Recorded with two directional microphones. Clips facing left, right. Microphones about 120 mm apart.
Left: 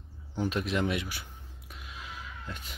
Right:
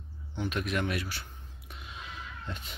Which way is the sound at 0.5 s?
25° left (ahead or behind).